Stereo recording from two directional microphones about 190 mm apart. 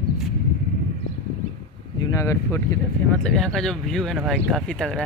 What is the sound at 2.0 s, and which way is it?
Speech, 15° left (ahead or behind).